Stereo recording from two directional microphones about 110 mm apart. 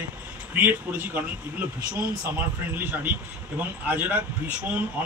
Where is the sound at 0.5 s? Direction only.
15° right (ahead or behind).